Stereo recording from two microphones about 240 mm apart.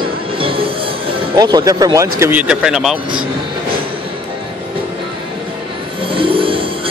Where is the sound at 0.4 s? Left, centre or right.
Right.